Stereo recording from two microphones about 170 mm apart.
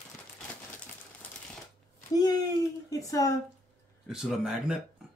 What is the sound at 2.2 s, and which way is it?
A woman's voice, 25° left (ahead or behind).